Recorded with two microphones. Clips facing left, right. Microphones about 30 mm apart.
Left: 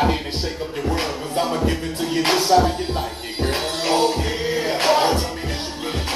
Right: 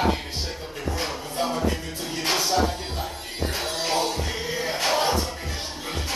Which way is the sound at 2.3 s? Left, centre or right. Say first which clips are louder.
Left 6 dB; left.